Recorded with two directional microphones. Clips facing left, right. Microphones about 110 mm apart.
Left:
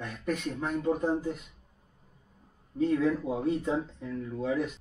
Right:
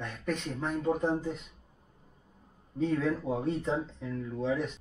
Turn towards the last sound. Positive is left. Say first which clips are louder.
# left 1 dB
turn(degrees=10)  # may be behind; listen again after turning